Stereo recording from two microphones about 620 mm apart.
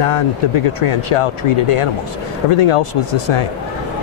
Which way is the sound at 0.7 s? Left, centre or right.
Left.